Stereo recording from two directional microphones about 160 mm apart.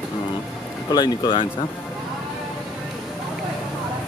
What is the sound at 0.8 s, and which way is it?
Speech, 25° left (ahead or behind).